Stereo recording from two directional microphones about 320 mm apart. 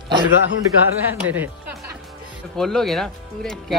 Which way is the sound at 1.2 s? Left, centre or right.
Centre.